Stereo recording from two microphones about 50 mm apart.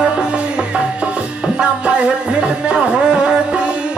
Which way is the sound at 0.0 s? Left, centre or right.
Centre.